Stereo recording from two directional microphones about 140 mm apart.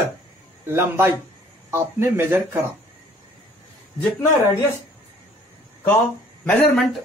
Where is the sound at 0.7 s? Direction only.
15° right (ahead or behind).